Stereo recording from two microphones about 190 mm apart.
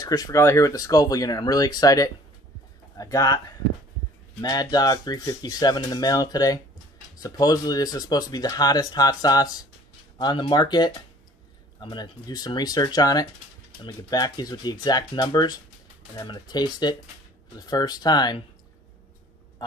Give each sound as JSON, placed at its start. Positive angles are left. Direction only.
{"t": 0.0, "sound": "speech", "side_deg": 20}
{"t": 4.4, "sound": "speech", "side_deg": 20}